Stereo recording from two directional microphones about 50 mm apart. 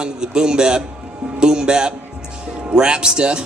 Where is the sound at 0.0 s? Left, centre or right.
Centre.